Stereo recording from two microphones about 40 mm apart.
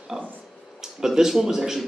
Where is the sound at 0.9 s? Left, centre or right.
Centre.